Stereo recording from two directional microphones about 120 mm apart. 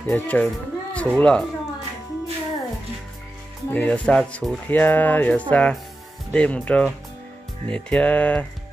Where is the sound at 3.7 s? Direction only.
10° left (ahead or behind).